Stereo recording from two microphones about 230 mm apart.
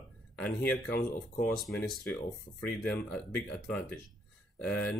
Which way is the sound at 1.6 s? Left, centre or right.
Centre.